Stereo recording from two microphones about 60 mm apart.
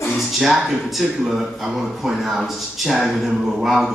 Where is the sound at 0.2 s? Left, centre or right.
Centre.